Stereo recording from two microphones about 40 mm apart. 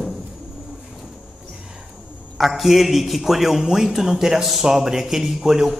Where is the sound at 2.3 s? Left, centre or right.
Centre.